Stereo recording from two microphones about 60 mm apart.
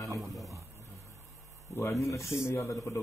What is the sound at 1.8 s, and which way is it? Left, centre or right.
Speech, left.